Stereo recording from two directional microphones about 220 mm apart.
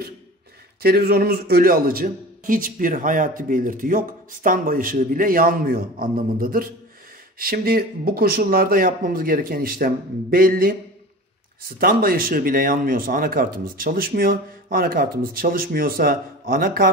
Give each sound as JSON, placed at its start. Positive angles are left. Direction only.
{"t": 0.8, "sound": "a man's voice", "side_deg": -45}
{"t": 11.8, "sound": "a man's voice", "side_deg": -40}